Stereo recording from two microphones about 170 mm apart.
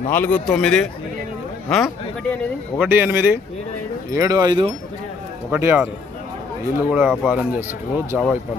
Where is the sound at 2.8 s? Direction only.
10° right (ahead or behind).